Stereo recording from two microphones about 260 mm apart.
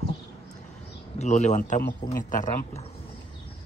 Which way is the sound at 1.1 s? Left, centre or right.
Left.